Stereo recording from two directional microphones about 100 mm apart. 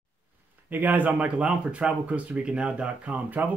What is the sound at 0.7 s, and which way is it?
Speech, 20° right (ahead or behind).